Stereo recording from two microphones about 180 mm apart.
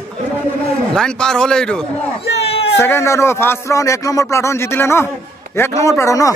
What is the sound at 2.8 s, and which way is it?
Speech, 15° left (ahead or behind).